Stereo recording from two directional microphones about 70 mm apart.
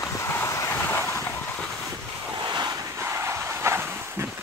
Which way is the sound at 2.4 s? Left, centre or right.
Right.